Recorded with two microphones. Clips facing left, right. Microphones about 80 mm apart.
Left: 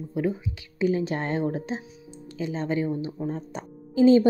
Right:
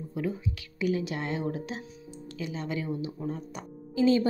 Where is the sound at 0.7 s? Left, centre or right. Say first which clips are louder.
Left 5 dB; left.